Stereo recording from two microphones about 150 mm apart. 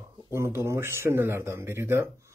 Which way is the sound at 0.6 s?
15° right (ahead or behind).